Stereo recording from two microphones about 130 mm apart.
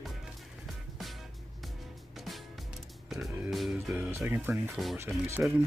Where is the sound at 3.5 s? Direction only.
Centre (ahead or behind).